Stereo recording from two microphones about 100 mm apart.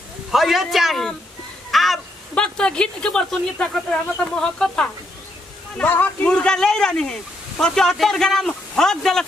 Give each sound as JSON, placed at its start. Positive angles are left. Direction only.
{"t": 0.3, "sound": "speech", "side_deg": 0}
{"t": 1.7, "sound": "a sound", "side_deg": 0}
{"t": 2.3, "sound": "speech", "side_deg": 10}